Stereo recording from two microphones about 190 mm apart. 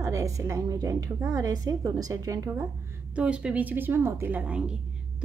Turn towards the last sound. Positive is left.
turn(degrees=-5)  # may be behind; listen again after turning